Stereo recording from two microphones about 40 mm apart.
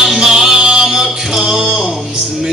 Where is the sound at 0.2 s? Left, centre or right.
Centre.